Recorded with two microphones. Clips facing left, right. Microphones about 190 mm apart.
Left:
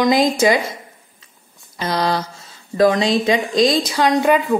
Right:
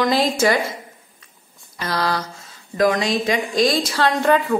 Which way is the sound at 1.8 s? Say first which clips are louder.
Left 3 dB; 20° left (ahead or behind).